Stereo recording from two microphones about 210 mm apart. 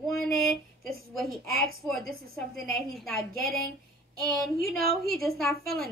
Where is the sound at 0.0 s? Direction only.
Centre (ahead or behind).